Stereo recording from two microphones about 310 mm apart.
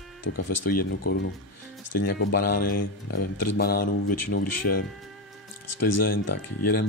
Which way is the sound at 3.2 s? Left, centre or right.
Left.